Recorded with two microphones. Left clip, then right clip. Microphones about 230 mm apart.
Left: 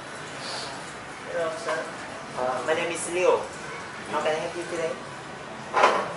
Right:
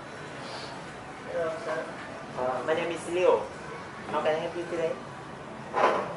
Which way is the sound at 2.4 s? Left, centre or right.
Right.